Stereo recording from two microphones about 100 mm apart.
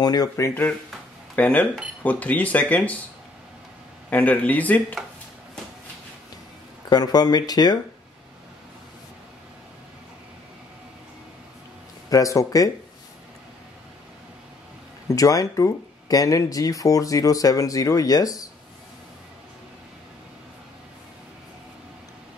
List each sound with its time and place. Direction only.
0.0 s speech: 40° left (ahead or behind)
1.3 s speech: 15° left (ahead or behind)
4.1 s speech: 15° left (ahead or behind)
6.9 s speech: 40° left (ahead or behind)
12.1 s speech: 35° left (ahead or behind)
15.0 s speech: 35° left (ahead or behind)